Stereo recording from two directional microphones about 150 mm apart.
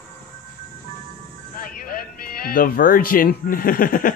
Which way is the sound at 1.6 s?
70° left (ahead or behind).